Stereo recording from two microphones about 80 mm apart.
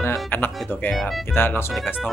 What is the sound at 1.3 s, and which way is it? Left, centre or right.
Speech, left.